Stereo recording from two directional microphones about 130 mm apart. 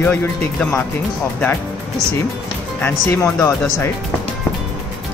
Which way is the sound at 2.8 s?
20° left (ahead or behind).